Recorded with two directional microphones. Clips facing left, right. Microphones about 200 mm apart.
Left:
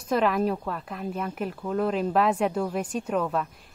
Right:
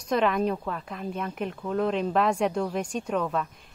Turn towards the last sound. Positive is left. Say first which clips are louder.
# left 1 dB
turn(degrees=0)  # may be behind; listen again after turning